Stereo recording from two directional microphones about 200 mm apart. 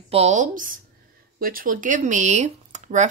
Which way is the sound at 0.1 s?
35° right (ahead or behind).